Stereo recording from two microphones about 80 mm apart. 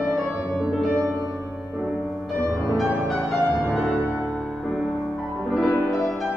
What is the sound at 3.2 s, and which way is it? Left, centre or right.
Music, centre.